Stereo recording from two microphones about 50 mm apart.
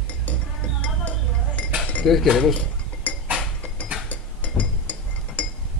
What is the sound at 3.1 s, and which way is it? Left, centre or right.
Chink, left.